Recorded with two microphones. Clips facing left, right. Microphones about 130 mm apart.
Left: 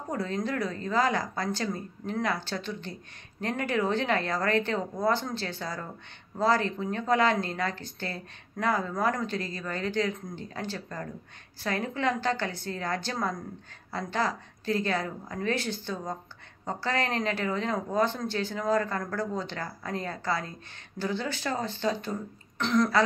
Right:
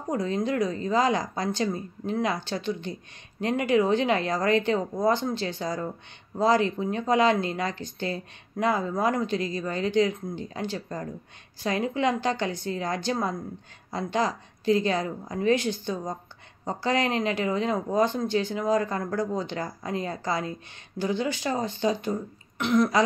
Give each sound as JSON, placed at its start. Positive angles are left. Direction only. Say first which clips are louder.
{"t": 0.1, "sound": "a woman's voice", "louder": "right 4 dB", "side_deg": -15}